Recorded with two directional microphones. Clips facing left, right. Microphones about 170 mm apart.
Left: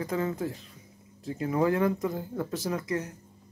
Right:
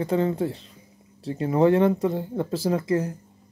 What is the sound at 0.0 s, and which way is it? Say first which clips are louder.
Speech: right 6 dB; 30° right (ahead or behind).